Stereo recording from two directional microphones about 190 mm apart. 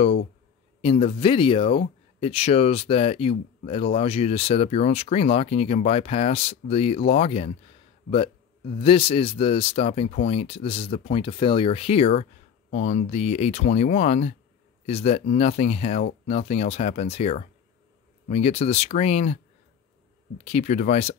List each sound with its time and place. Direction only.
0.7 s a man's voice: 30° left (ahead or behind)
20.4 s speech: 35° left (ahead or behind)